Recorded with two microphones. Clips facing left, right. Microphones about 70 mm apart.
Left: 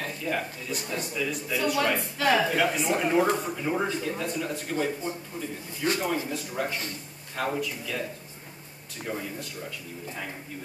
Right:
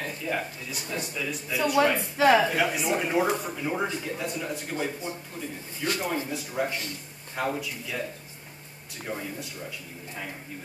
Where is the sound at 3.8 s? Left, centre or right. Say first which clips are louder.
Left 1 dB; centre.